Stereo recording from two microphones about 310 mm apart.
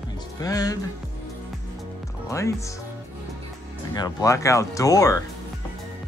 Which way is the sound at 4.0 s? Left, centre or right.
Centre.